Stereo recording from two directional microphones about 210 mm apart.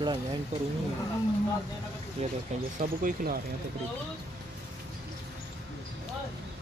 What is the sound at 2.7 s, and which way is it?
Speech, 40° right (ahead or behind).